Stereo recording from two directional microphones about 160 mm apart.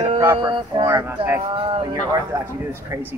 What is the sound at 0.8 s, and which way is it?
Speech, 15° right (ahead or behind).